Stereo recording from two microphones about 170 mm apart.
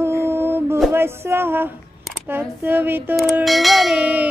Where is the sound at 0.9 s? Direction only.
15° right (ahead or behind).